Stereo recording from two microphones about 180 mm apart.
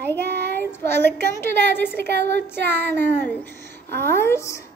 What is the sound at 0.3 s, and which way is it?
Child singing, 65° right (ahead or behind).